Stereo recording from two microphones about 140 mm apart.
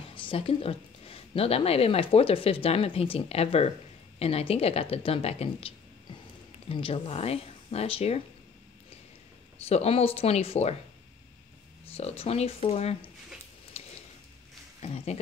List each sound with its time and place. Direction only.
0.1 s a woman's voice: 40° left (ahead or behind)
9.7 s a woman's voice: 45° left (ahead or behind)
11.8 s a woman's voice: 45° left (ahead or behind)
13.7 s a sound: 45° left (ahead or behind)
14.8 s speech: 50° left (ahead or behind)